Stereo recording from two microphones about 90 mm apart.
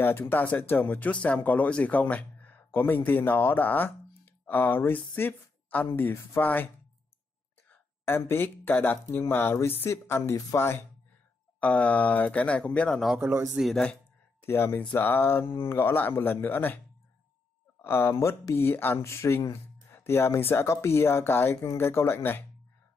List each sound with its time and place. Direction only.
0.0 s speech: 25° left (ahead or behind)
7.7 s speech: 25° left (ahead or behind)
11.6 s speech: 15° left (ahead or behind)
13.2 s a man's voice: 25° right (ahead or behind)
13.6 s speech: centre (ahead or behind)
14.4 s speech: 25° left (ahead or behind)
17.8 s speech: 25° left (ahead or behind)